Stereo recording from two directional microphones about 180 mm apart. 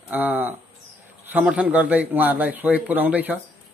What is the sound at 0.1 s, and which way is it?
Speech, 10° right (ahead or behind).